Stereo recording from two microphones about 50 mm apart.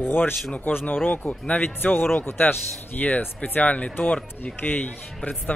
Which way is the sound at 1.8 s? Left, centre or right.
Left.